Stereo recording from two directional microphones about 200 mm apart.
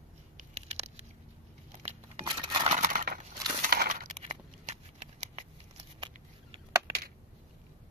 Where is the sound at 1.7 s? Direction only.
35° right (ahead or behind).